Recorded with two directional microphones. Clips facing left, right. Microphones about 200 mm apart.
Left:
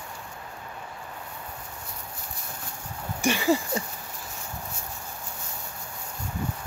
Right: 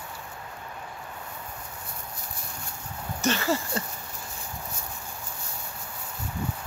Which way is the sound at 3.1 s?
15° left (ahead or behind).